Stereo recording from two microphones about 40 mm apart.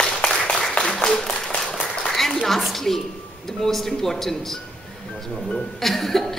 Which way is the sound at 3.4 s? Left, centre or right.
Centre.